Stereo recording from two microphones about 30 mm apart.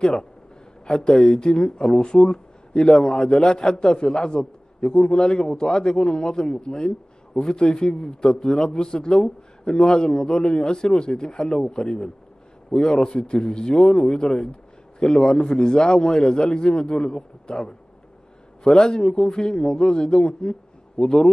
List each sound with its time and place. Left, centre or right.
0.0 s speech: left